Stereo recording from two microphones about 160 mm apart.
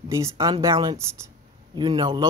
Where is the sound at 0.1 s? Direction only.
20° right (ahead or behind).